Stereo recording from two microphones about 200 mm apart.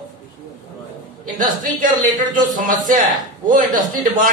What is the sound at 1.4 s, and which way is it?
A man's voice, 40° right (ahead or behind).